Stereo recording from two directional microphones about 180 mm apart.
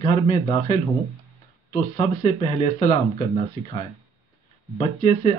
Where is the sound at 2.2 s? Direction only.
30° left (ahead or behind).